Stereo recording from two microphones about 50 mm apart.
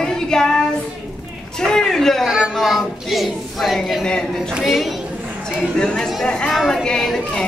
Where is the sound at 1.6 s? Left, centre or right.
Centre.